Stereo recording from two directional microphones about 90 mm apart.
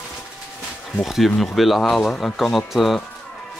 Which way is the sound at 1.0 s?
Centre (ahead or behind).